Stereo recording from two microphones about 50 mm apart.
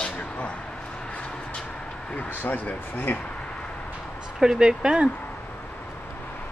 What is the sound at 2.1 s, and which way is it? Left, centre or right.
Speech, left.